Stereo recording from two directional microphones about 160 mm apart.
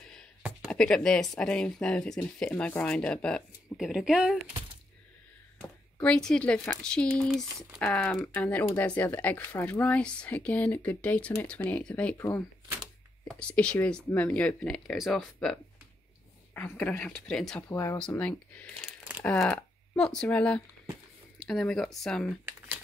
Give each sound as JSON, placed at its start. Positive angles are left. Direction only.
{"t": 0.7, "sound": "speech", "side_deg": 5}
{"t": 5.9, "sound": "speech", "side_deg": 5}
{"t": 17.6, "sound": "speech", "side_deg": 15}